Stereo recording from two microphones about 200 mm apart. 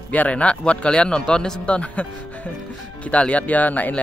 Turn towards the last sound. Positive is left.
turn(degrees=10)  # may be behind; listen again after turning